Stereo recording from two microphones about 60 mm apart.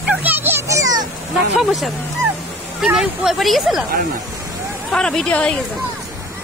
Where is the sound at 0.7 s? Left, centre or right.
Right.